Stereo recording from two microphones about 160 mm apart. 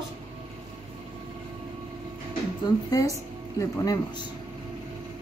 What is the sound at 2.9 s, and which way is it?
Speech, 20° left (ahead or behind).